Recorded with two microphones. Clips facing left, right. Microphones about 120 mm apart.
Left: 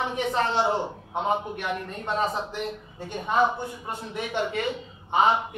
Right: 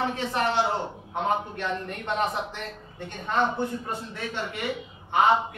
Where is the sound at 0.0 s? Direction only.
20° left (ahead or behind).